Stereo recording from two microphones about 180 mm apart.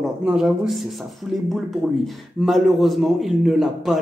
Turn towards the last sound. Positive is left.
turn(degrees=0)  # may be behind; listen again after turning